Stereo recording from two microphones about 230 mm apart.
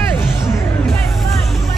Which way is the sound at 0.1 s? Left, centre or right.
Centre.